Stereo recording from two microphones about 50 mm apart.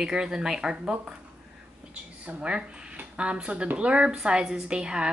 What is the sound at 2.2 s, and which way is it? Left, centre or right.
A woman's voice, right.